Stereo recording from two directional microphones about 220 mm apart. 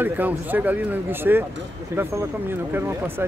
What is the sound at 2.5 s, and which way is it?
Speech, 10° right (ahead or behind).